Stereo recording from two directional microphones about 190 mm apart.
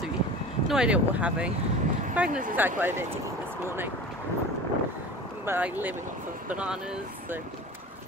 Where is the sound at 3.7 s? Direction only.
10° right (ahead or behind).